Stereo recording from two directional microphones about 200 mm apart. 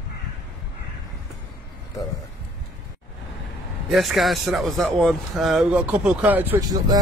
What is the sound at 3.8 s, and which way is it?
Speech, centre (ahead or behind).